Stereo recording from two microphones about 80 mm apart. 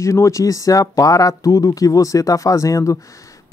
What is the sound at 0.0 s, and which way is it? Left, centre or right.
Speech, left.